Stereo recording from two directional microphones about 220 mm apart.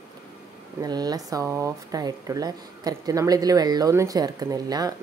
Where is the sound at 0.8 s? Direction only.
15° right (ahead or behind).